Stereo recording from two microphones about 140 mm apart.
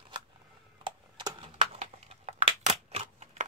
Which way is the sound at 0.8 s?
35° right (ahead or behind).